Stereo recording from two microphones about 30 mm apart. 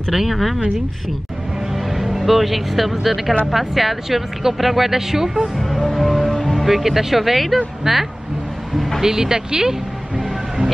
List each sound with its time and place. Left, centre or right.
0.1 s speech: centre
2.1 s speech: centre
5.6 s music: centre
6.7 s speech: centre
8.7 s vehicle: centre
9.0 s music: centre